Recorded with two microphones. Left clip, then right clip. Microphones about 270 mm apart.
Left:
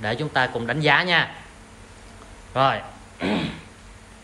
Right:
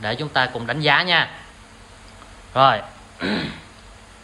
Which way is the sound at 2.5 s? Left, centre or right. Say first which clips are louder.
Right 5 dB; centre.